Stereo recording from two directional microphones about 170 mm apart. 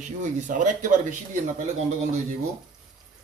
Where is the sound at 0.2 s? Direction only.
50° right (ahead or behind).